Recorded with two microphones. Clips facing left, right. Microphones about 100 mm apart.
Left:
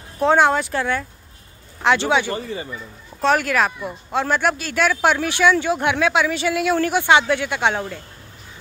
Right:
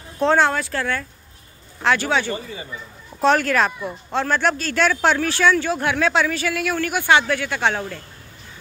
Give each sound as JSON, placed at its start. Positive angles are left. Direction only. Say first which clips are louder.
{"t": 0.2, "sound": "speech", "louder": "left 2 dB", "side_deg": 15}
{"t": 3.3, "sound": "speech", "louder": "even", "side_deg": 10}